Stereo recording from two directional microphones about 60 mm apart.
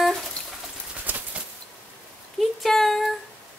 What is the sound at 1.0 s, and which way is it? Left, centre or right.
Bird flight, right.